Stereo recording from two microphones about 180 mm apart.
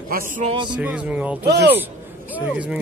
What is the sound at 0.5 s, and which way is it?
Speech, 25° right (ahead or behind).